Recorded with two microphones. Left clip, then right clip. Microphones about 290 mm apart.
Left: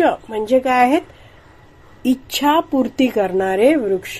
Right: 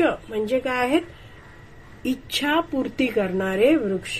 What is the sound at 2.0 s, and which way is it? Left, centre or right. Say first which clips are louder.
A woman's voice: left 7 dB; left.